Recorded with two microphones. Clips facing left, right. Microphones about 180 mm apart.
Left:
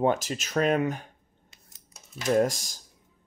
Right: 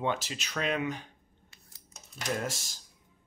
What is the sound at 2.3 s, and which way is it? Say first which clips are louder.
Speech: left 12 dB; 45° left (ahead or behind).